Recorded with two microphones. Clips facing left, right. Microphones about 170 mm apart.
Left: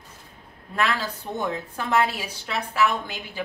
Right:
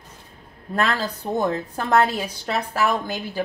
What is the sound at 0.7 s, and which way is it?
A woman's voice, 40° right (ahead or behind).